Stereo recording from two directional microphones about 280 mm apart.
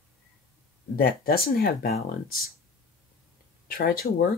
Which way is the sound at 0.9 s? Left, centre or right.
Left.